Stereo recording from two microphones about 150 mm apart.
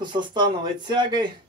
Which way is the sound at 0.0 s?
30° right (ahead or behind).